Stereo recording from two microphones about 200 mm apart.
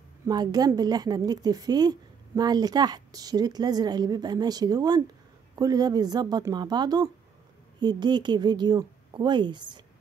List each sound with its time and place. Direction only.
0.3 s a woman's voice: 20° right (ahead or behind)